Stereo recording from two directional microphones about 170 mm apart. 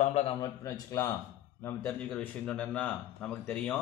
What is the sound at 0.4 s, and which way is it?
Speech, 20° left (ahead or behind).